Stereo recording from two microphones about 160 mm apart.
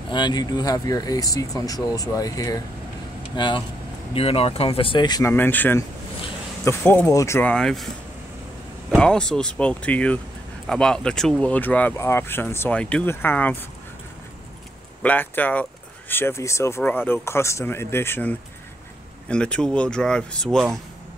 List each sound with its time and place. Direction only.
0.1 s speech: 30° left (ahead or behind)
5.3 s speech: 10° left (ahead or behind)
8.9 s speech: 5° left (ahead or behind)
15.0 s speech: 10° left (ahead or behind)